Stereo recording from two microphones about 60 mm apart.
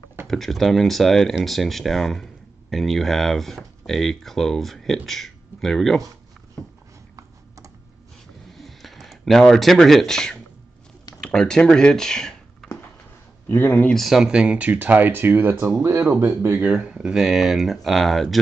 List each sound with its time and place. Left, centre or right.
0.3 s speech: centre
6.6 s a sound: left
7.2 s computer keyboard: right
8.5 s a sound: centre
11.2 s speech: centre
13.5 s speech: left
13.9 s speech: centre; by 16.8 s right
16.8 s speech: centre